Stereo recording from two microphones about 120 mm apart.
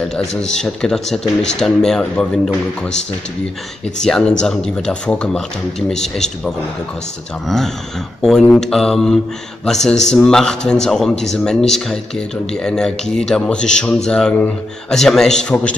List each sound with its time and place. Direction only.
0.0 s speech: 5° left (ahead or behind)
4.0 s speech: 5° left (ahead or behind)